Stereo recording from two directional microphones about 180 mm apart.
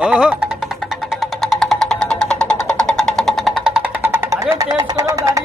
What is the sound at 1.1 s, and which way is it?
Music, centre (ahead or behind).